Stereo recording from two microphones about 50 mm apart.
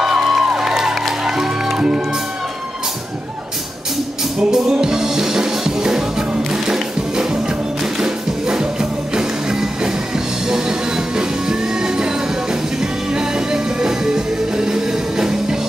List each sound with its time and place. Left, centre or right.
0.0 s music: centre
1.8 s speech: centre
4.4 s music: centre